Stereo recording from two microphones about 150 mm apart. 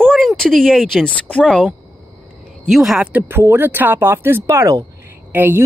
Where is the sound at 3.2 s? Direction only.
15° right (ahead or behind).